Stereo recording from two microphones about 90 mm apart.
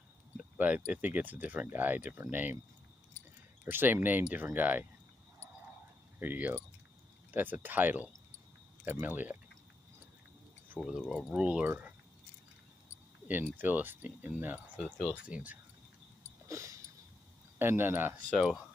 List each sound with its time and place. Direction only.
0.6 s speech: 15° right (ahead or behind)
3.6 s speech: 20° right (ahead or behind)
6.1 s speech: 20° right (ahead or behind)
10.8 s speech: 10° right (ahead or behind)
13.3 s speech: 20° right (ahead or behind)
16.4 s a sound: 35° right (ahead or behind)
17.6 s speech: 25° right (ahead or behind)